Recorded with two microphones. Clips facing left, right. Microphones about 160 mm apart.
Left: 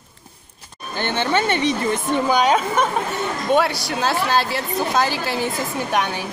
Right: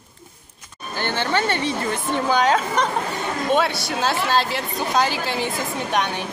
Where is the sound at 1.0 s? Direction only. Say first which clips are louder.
Left 2 dB; 20° left (ahead or behind).